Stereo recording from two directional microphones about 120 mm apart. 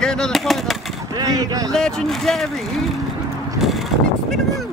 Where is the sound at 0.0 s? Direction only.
5° left (ahead or behind).